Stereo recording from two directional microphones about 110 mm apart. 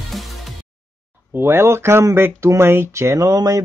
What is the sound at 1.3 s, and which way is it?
Speech, 20° right (ahead or behind).